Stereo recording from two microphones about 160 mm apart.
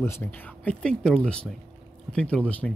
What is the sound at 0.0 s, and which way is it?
Speech, 15° left (ahead or behind).